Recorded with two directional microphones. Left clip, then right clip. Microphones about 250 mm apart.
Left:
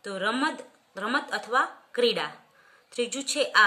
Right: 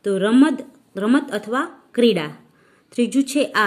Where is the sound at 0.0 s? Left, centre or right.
Centre.